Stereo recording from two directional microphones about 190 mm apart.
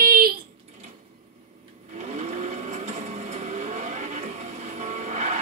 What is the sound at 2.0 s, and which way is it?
Vehicle, 35° right (ahead or behind).